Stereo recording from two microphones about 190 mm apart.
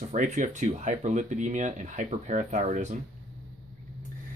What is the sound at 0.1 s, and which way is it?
Speech, 40° right (ahead or behind).